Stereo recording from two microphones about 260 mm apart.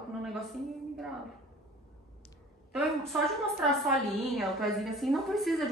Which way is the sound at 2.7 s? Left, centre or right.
Centre.